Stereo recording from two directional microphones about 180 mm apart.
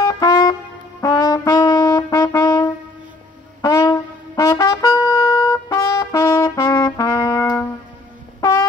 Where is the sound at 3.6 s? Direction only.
15° left (ahead or behind).